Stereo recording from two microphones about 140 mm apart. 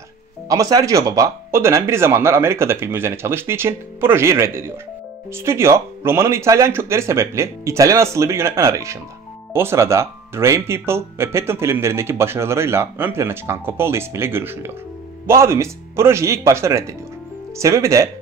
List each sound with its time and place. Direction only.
0.5 s speech: 25° right (ahead or behind)